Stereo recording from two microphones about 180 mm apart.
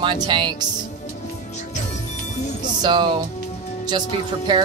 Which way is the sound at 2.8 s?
25° right (ahead or behind).